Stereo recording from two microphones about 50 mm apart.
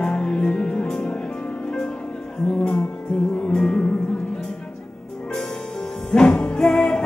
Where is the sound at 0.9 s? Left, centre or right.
Centre.